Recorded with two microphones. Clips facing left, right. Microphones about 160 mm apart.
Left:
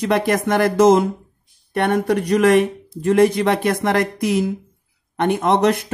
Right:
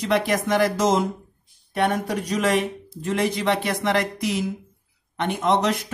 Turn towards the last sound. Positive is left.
turn(degrees=55)  # may be behind; listen again after turning